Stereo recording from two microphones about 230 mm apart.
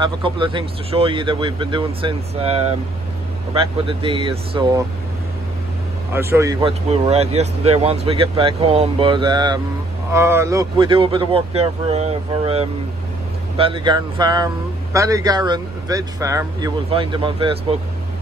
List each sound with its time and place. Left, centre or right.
0.0 s speech: right
6.1 s speech: centre
6.6 s speech: right